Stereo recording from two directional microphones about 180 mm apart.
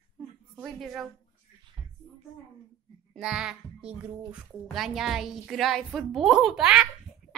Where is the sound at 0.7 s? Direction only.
Centre (ahead or behind).